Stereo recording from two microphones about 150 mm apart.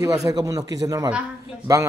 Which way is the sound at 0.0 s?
25° right (ahead or behind).